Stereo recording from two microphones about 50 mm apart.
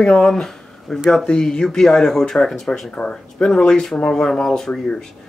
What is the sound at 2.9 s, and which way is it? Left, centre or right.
Speech, left.